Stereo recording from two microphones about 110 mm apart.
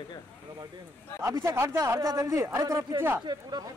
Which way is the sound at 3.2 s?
40° right (ahead or behind).